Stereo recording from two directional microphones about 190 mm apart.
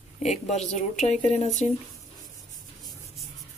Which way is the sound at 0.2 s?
35° left (ahead or behind).